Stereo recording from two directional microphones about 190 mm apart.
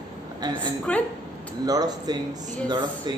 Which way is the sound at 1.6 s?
20° right (ahead or behind).